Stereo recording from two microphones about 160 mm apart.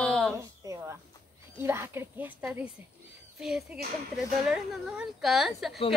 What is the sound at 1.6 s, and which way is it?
Speech, 15° right (ahead or behind).